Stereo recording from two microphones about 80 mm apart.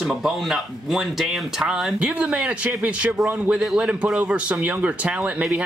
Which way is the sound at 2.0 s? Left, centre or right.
Centre.